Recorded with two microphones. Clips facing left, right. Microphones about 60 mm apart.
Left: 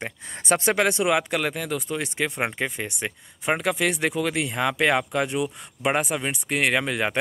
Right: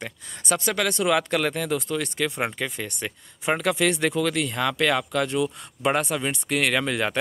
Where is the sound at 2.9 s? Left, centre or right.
Centre.